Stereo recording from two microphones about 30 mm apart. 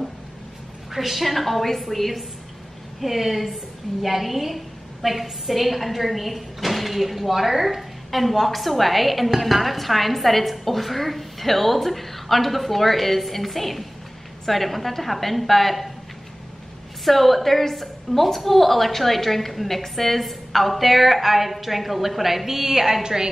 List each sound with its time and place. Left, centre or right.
0.9 s a woman's voice: centre
17.0 s a woman's voice: centre; by 23.3 s right